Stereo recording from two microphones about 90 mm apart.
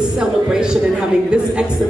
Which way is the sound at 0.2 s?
10° right (ahead or behind).